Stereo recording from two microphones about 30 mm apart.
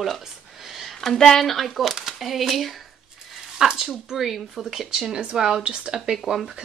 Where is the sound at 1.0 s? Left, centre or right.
Centre.